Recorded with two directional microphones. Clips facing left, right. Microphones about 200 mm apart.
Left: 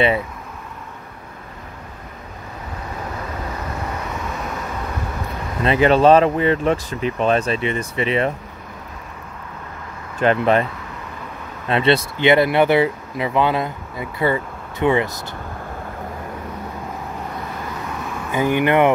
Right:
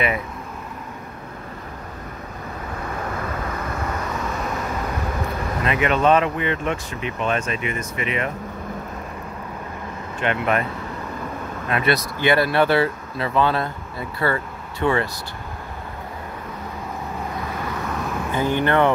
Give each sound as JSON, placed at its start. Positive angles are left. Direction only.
{"t": 5.6, "sound": "speech", "side_deg": 30}
{"t": 10.2, "sound": "speech", "side_deg": 30}
{"t": 11.7, "sound": "speech", "side_deg": 25}
{"t": 18.3, "sound": "speech", "side_deg": 15}